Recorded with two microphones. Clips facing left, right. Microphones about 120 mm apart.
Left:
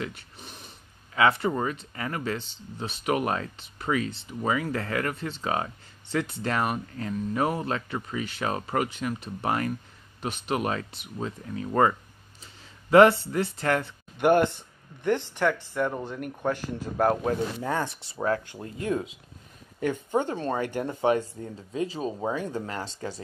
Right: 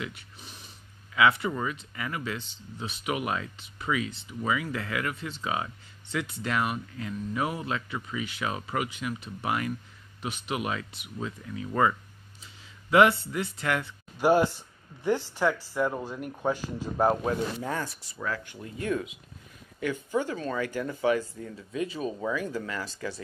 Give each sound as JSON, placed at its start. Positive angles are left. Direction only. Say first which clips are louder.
{"t": 0.0, "sound": "a sound", "louder": "left 3 dB", "side_deg": 45}
{"t": 1.1, "sound": "speech", "louder": "left 1 dB", "side_deg": 40}
{"t": 14.1, "sound": "speech", "louder": "left 1 dB", "side_deg": 60}
{"t": 15.4, "sound": "speech", "louder": "even", "side_deg": -10}
{"t": 16.5, "sound": "speech", "louder": "left 1 dB", "side_deg": 55}
{"t": 17.3, "sound": "speech", "louder": "left 2 dB", "side_deg": 40}
{"t": 17.8, "sound": "speech", "louder": "left 7 dB", "side_deg": 30}
{"t": 19.8, "sound": "speech", "louder": "left 3 dB", "side_deg": 50}
{"t": 20.2, "sound": "speech", "louder": "left 2 dB", "side_deg": 35}